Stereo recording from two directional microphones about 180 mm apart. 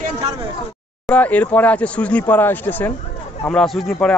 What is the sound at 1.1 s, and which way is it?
Speech, 10° left (ahead or behind).